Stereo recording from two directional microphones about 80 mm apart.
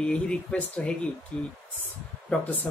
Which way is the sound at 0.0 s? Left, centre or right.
Centre.